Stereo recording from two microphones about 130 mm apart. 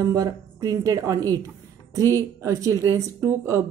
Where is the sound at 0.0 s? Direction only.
25° right (ahead or behind).